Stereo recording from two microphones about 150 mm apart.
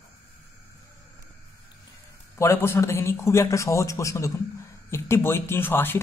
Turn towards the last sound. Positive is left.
turn(degrees=15)  # may be behind; listen again after turning